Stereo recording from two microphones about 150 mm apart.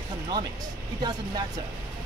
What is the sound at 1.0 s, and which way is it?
Speech, 25° right (ahead or behind).